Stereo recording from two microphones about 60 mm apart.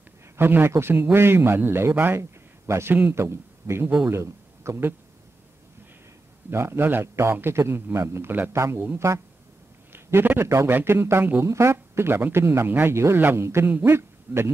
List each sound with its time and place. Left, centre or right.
0.4 s a man's voice: right
2.1 s a sound: right
3.1 s a man's voice: right
6.5 s speech: right
9.9 s a sound: right
10.4 s speech: right
10.7 s a man's voice: right